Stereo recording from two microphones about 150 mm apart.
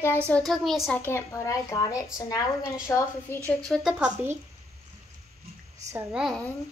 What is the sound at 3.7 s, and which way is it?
Speech, 5° right (ahead or behind).